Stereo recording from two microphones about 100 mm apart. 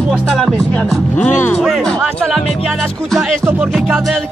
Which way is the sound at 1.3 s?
20° left (ahead or behind).